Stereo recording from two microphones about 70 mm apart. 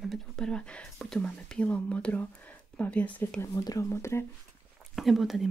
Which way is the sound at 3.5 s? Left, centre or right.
Left.